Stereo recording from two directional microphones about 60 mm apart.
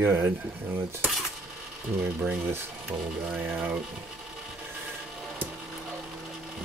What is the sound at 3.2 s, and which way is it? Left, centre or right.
Speech, right.